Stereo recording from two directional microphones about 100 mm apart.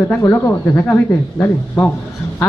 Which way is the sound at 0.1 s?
25° left (ahead or behind).